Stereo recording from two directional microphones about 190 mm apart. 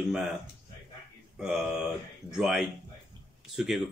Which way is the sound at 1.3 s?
5° right (ahead or behind).